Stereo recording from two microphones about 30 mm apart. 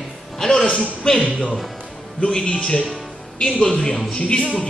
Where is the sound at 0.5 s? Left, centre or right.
Left.